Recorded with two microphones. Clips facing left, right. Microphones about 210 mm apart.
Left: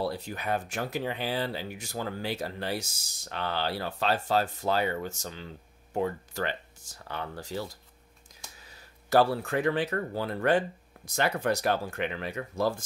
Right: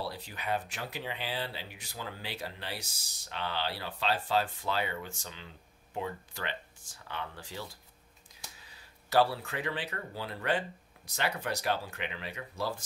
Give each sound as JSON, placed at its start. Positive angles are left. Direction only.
{"t": 0.0, "sound": "speech", "side_deg": 45}
{"t": 9.1, "sound": "speech", "side_deg": 45}